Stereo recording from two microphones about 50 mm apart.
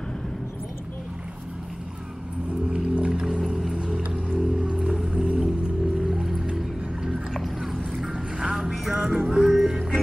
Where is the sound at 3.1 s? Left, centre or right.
Centre.